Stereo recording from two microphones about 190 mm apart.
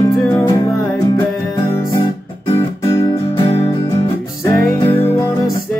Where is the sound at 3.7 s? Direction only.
15° left (ahead or behind).